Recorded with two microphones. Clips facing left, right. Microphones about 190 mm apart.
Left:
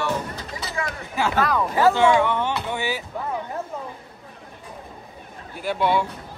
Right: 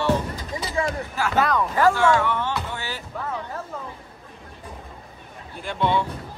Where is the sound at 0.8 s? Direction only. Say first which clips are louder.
Right 5 dB; 30° right (ahead or behind).